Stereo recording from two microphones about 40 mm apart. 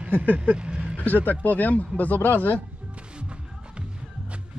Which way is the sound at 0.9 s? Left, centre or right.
Left.